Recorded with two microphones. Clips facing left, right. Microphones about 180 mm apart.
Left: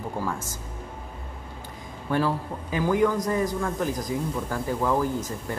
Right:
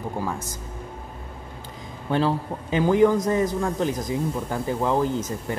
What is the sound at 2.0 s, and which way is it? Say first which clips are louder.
A man's voice: right 2 dB; 25° right (ahead or behind).